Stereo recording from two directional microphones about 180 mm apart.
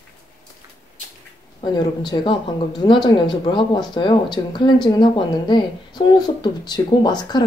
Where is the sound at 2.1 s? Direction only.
20° left (ahead or behind).